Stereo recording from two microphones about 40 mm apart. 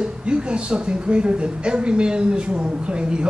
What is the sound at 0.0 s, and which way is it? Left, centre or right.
A man's voice, right.